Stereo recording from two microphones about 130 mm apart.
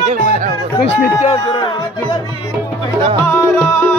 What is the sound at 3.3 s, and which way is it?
Music, 15° left (ahead or behind).